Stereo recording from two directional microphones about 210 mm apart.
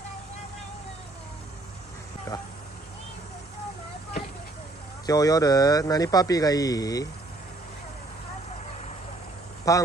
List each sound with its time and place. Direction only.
5.0 s speech: 15° left (ahead or behind)
9.7 s speech: 15° left (ahead or behind)